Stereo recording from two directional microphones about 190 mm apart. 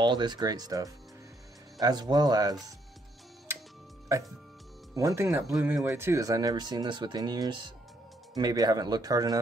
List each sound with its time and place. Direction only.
0.0 s speech: 25° right (ahead or behind)
4.1 s speech: 15° right (ahead or behind)